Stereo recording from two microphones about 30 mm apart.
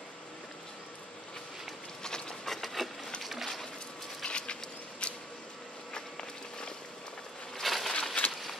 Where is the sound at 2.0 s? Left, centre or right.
Left.